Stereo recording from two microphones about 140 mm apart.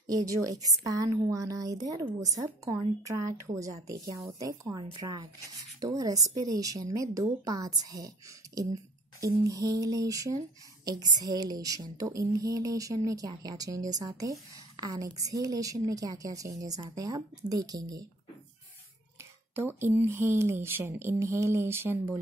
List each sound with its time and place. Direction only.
0.1 s a woman's voice: 25° right (ahead or behind)
19.5 s speech: 15° right (ahead or behind)